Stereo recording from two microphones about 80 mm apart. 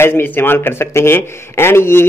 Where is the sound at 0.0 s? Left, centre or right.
Left.